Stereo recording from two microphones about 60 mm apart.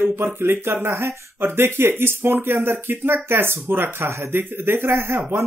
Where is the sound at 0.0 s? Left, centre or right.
Right.